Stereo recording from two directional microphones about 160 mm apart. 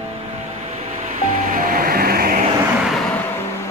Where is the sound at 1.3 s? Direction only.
60° right (ahead or behind).